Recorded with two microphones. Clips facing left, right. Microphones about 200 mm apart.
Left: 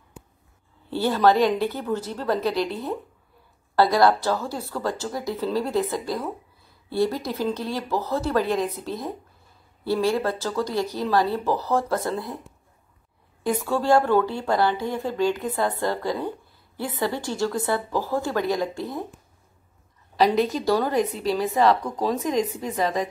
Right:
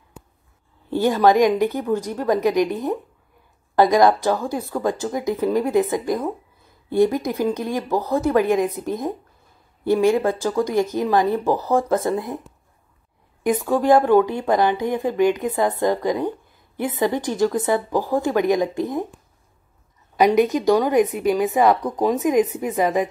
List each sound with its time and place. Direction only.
0.8 s a woman's voice: 15° right (ahead or behind)
13.4 s a woman's voice: 15° right (ahead or behind)
20.4 s a woman's voice: 15° right (ahead or behind)